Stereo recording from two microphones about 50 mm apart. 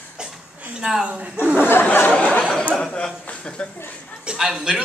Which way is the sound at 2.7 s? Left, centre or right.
Centre.